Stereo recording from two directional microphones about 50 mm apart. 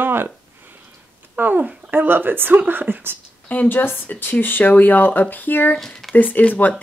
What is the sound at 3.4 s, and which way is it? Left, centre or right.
Speech, left.